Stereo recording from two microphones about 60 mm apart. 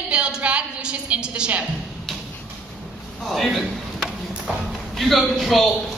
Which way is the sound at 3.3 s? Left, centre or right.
Centre.